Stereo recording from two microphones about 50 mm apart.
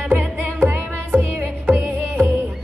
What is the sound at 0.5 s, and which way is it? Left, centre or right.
Music, right.